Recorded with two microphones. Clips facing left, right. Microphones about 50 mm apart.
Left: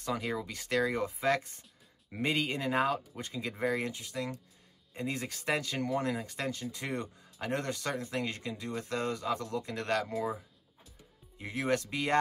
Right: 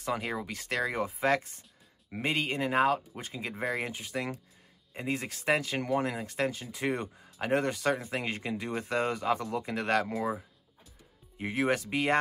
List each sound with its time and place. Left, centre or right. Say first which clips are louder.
0.0 s speech: right 1 dB; centre
3.9 s speech: right 6 dB; right
4.9 s speech: right 2 dB; centre; by 10.1 s right
11.5 s speech: right 3 dB; centre